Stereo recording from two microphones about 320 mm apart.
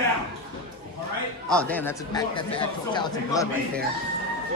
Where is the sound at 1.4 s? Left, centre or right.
Centre.